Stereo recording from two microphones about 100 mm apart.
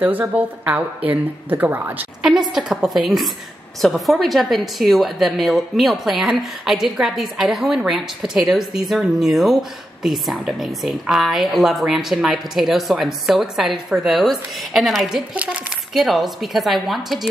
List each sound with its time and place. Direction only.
0.0 s a woman's voice: 15° right (ahead or behind)
2.2 s a woman's voice: 5° right (ahead or behind)
15.3 s a woman's voice: 10° right (ahead or behind)
15.9 s a woman's voice: centre (ahead or behind)